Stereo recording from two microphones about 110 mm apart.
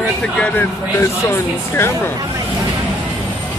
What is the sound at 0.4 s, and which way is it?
Speech, 15° left (ahead or behind).